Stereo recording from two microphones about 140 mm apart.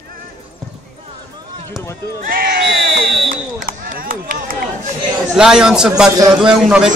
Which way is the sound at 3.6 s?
90° right.